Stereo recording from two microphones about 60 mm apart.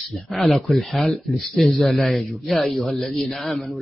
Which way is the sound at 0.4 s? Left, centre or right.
Centre.